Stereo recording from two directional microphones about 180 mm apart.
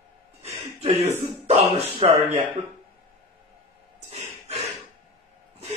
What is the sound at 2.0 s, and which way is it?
Speech, 30° right (ahead or behind).